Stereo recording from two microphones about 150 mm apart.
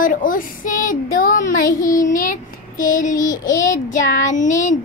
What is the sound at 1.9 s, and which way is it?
Child singing, 65° left (ahead or behind).